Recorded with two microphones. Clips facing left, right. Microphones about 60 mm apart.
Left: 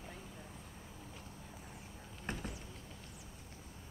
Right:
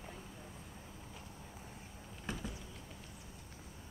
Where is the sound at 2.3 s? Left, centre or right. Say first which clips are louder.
Left 1 dB; left.